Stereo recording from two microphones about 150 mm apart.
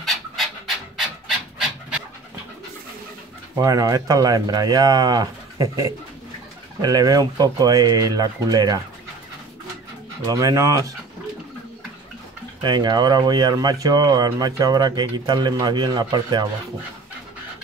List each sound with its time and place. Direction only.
0.0 s a sound: centre (ahead or behind)
3.5 s speech: 20° right (ahead or behind)
10.2 s speech: 20° right (ahead or behind)
12.6 s speech: 30° right (ahead or behind)